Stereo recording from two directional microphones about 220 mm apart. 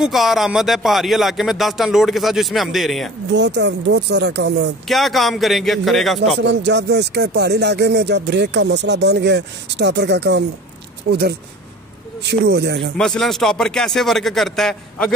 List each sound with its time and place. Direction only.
0.0 s speech: centre (ahead or behind)
3.3 s speech: 55° right (ahead or behind)
4.8 s speech: centre (ahead or behind)
6.4 s speech: 55° right (ahead or behind)
12.9 s speech: centre (ahead or behind)